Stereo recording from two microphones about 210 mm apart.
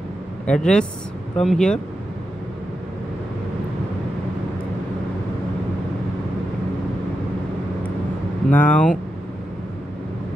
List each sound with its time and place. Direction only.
0.5 s speech: 5° left (ahead or behind)
8.5 s speech: 5° left (ahead or behind)